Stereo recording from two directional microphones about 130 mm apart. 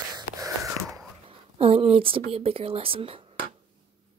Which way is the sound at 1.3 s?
50° right (ahead or behind).